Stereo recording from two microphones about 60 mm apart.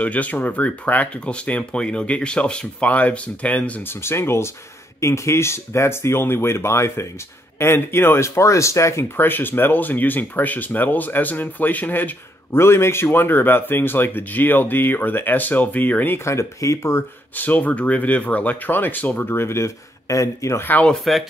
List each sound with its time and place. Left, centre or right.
0.0 s speech: left
3.8 s speech: left
8.4 s speech: left
9.1 s speech: left
12.5 s speech: left
16.3 s speech: left
17.4 s speech: left
21.1 s speech: centre